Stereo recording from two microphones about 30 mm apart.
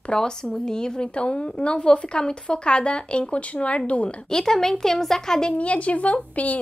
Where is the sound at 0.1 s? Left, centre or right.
Left.